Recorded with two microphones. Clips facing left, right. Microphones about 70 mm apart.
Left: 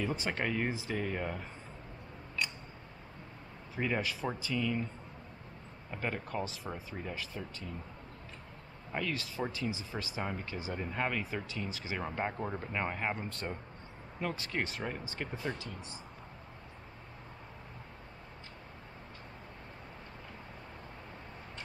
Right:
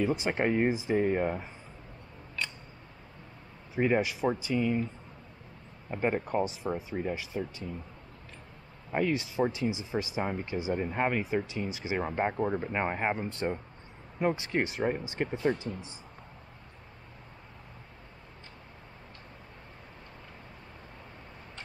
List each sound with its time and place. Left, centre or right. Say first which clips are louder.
0.0 s speech: right 6 dB; centre
3.7 s speech: right 7 dB; centre
5.9 s speech: right 8 dB; right
8.9 s speech: right 8 dB; centre